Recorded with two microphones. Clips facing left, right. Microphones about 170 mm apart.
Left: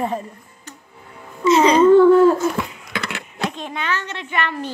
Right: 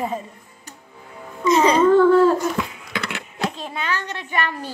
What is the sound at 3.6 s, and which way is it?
Speech, 35° right (ahead or behind).